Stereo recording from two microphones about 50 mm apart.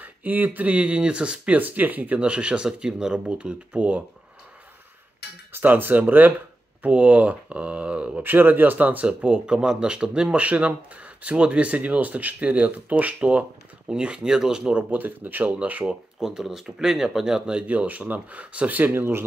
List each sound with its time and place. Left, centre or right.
0.0 s speech: right; by 3.3 s centre
3.3 s speech: right
5.5 s speech: right
6.9 s speech: right
8.2 s speech: right; by 10.3 s centre
10.3 s speech: right
13.8 s speech: centre
14.9 s speech: right
15.8 s speech: centre
16.3 s speech: centre; by 18.9 s right
18.9 s speech: right